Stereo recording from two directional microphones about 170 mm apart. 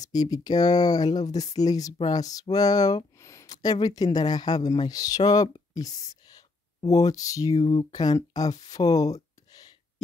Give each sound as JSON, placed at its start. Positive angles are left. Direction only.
{"t": 0.0, "sound": "speech", "side_deg": 20}